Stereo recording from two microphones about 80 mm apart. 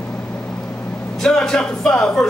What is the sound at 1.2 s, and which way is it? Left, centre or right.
A man's voice, centre.